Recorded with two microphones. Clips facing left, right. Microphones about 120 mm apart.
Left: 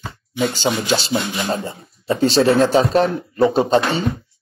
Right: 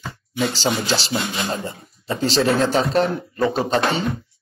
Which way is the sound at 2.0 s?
20° left (ahead or behind).